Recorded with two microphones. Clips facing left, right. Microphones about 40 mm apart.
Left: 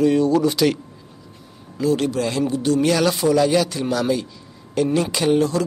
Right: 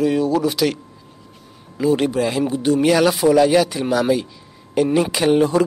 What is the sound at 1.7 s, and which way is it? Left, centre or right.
Speech, centre.